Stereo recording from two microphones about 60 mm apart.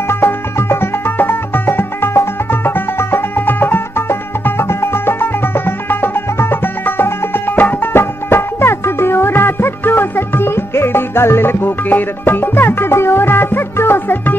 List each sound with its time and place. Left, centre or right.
0.1 s music: left